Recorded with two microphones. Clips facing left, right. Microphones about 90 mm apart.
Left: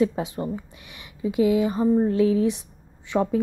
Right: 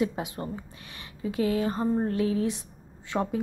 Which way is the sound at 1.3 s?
20° left (ahead or behind).